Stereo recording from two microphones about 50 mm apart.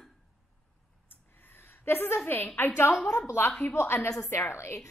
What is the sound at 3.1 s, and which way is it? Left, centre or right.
Speech, left.